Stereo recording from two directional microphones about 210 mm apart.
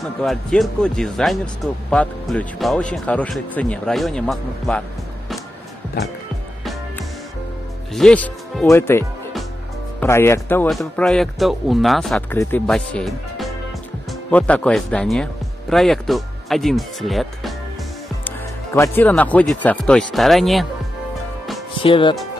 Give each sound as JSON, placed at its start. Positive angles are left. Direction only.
{"t": 0.2, "sound": "speech", "side_deg": 0}
{"t": 7.9, "sound": "speech", "side_deg": 5}
{"t": 21.7, "sound": "speech", "side_deg": 25}